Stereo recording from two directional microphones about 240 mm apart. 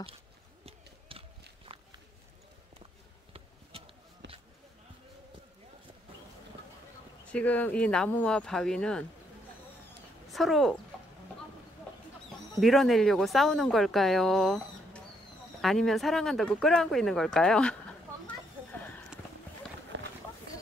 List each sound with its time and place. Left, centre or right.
0.7 s a sound: right
4.2 s basketball bounce: right
7.3 s speech: centre
10.3 s speech: centre
12.5 s speech: centre